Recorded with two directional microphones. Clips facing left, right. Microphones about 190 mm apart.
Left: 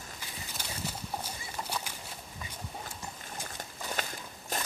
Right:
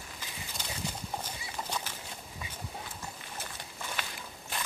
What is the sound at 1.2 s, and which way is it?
Horse, 10° left (ahead or behind).